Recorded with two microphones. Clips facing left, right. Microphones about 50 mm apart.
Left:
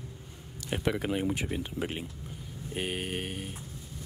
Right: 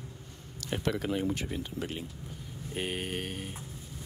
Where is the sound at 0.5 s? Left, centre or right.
Centre.